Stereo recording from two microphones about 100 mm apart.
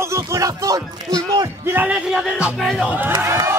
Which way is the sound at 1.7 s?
15° right (ahead or behind).